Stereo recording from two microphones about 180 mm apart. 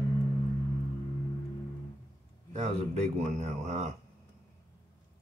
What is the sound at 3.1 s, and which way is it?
Speech, 40° right (ahead or behind).